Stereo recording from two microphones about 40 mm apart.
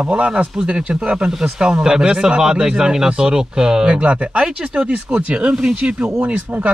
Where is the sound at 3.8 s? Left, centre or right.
Right.